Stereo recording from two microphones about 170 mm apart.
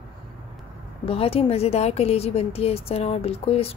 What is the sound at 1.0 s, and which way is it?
A woman's voice, 35° left (ahead or behind).